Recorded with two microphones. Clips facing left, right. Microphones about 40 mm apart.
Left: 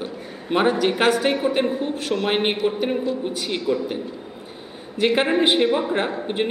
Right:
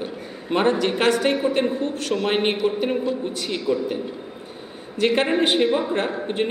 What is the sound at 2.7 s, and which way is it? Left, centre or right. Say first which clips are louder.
Speech: even; centre.